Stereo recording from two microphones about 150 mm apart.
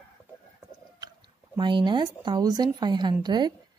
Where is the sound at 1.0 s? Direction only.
30° right (ahead or behind).